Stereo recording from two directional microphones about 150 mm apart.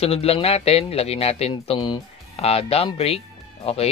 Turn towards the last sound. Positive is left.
turn(degrees=40)  # may be behind; listen again after turning